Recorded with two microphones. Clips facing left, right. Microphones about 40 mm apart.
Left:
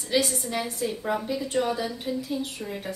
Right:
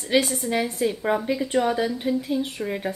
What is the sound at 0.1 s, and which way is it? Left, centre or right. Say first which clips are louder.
A woman's voice: right 4 dB; right.